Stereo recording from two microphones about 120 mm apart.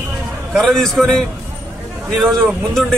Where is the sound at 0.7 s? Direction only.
Centre (ahead or behind).